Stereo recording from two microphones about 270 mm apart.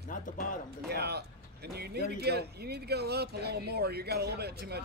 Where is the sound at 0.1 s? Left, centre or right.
Left.